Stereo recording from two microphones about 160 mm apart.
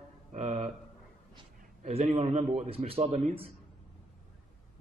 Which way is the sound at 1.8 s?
40° right (ahead or behind).